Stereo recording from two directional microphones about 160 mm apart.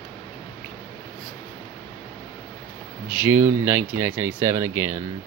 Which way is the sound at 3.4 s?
15° right (ahead or behind).